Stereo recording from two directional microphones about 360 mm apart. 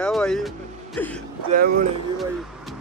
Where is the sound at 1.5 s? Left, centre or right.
Right.